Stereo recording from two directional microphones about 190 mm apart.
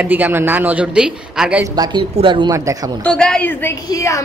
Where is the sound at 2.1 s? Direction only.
25° right (ahead or behind).